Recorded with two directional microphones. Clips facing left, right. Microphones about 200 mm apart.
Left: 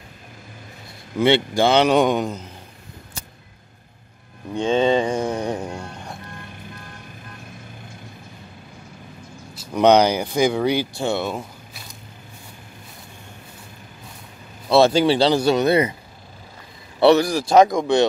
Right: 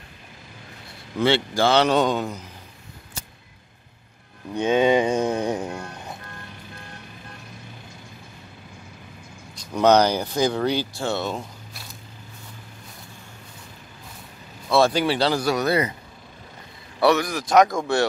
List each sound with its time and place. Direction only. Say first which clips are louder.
1.2 s speech: left 3 dB; 20° left (ahead or behind)
4.6 s mantra: even; 15° right (ahead or behind)
5.3 s music: even; 20° right (ahead or behind)
9.8 s speech: left 2 dB; 15° left (ahead or behind)
14.7 s speech: left 4 dB; 25° left (ahead or behind)
17.0 s speech: left 5 dB; 30° left (ahead or behind)
17.7 s speech: left 5 dB; 20° left (ahead or behind)